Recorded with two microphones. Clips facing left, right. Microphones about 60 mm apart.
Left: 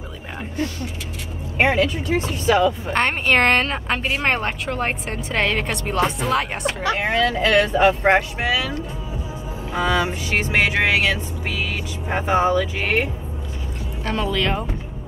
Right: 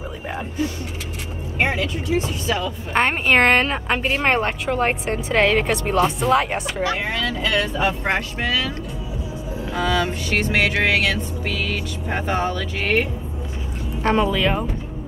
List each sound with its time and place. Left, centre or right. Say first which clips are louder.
1.6 s speech: left 4 dB; left
2.9 s speech: right 1 dB; centre
7.2 s speech: left 5 dB; left
8.4 s speech: left 1 dB; centre
14.1 s speech: right 2 dB; centre